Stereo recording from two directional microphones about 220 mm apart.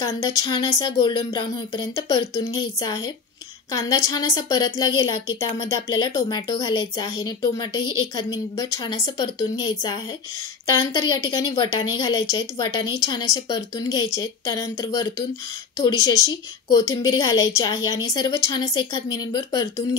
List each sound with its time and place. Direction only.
0.0 s a woman's voice: 15° left (ahead or behind)